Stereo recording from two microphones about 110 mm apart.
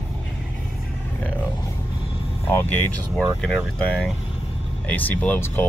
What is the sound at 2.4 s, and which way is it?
Speech, 20° left (ahead or behind).